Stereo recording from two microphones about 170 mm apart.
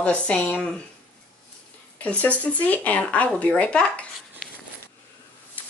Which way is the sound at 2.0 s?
10° left (ahead or behind).